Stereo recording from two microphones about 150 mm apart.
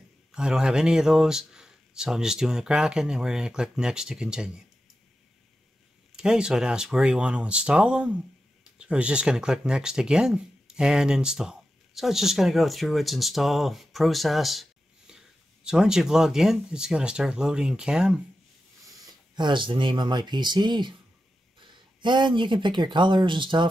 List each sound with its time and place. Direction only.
0.3 s speech: 5° right (ahead or behind)
6.1 s speech: 5° right (ahead or behind)
19.3 s speech: 30° right (ahead or behind)